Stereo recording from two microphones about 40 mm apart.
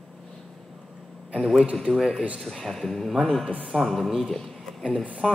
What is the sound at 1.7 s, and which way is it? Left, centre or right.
A man's voice, centre.